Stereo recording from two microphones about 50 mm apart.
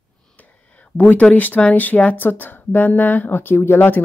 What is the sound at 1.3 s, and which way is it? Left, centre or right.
Speech, left.